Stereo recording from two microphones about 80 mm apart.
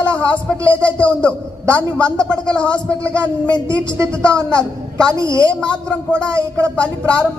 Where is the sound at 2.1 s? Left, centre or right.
Centre.